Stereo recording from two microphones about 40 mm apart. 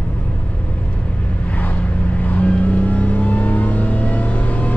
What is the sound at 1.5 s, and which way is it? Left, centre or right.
Vehicle, left.